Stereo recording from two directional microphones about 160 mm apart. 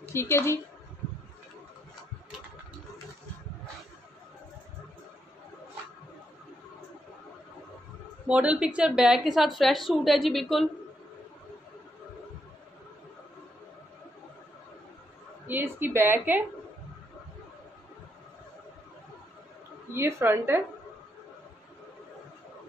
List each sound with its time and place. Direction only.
0.0 s a woman's voice: 15° left (ahead or behind)
8.3 s a woman's voice: 5° right (ahead or behind)
15.4 s a woman's voice: 10° right (ahead or behind)
19.9 s a woman's voice: 15° right (ahead or behind)